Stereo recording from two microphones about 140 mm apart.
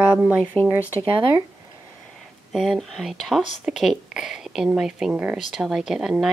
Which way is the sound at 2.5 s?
5° right (ahead or behind).